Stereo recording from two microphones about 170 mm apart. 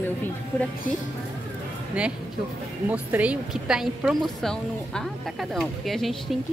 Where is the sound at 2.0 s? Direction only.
5° right (ahead or behind).